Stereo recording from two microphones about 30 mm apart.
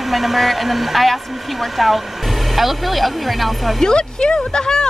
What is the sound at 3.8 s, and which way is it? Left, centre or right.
Speech, left.